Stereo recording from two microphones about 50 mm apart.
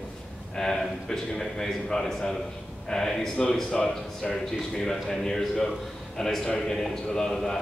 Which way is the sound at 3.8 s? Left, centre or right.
Left.